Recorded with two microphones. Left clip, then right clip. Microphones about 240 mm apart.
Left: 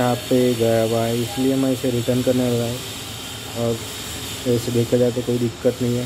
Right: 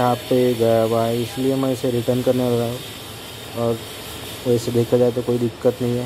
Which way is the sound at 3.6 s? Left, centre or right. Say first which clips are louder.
Right 2 dB; centre.